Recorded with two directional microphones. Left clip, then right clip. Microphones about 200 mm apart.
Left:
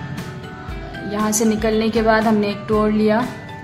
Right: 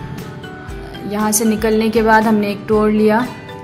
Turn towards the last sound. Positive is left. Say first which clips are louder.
# right 4 dB
turn(degrees=-15)  # may be behind; listen again after turning